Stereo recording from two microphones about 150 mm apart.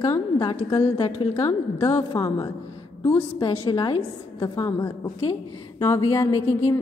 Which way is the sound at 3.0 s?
15° left (ahead or behind).